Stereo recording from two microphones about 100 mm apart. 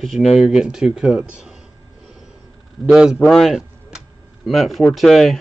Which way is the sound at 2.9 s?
10° right (ahead or behind).